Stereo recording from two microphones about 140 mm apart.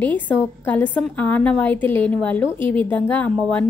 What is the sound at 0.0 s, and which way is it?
A woman's voice, 10° left (ahead or behind).